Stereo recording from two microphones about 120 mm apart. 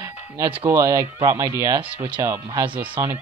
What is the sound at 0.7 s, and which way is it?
Speech, 25° right (ahead or behind).